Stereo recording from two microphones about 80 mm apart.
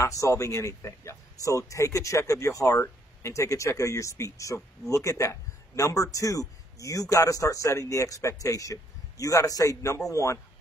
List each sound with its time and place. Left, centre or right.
0.0 s a man's voice: left